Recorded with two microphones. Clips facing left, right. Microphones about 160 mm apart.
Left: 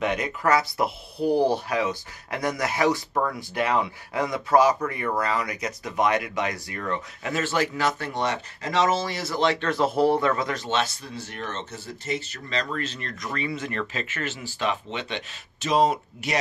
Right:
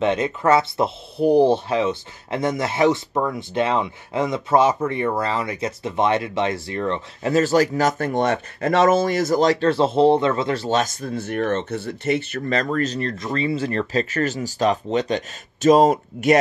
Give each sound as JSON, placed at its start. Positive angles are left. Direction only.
{"t": 0.0, "sound": "speech", "side_deg": -25}
{"t": 7.3, "sound": "speech", "side_deg": -40}